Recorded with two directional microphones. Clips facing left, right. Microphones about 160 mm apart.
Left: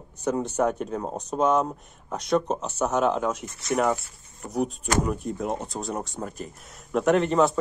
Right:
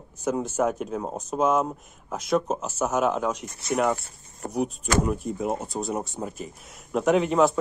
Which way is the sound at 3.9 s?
50° right (ahead or behind).